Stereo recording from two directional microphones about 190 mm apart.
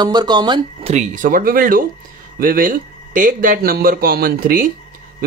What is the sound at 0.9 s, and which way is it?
Speech, 40° right (ahead or behind).